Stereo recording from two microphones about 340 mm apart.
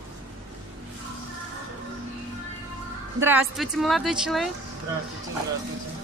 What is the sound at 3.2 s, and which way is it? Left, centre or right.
A woman's voice, centre.